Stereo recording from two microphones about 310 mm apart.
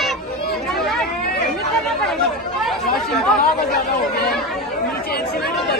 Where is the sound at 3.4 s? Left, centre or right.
Left.